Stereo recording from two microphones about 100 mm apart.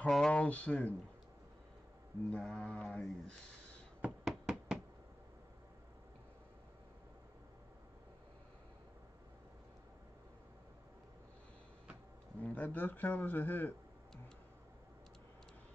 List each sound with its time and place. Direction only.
0.1 s speech: 10° left (ahead or behind)
2.3 s a sound: 5° left (ahead or behind)
4.0 s knock: 5° right (ahead or behind)
12.4 s a man's voice: 15° left (ahead or behind)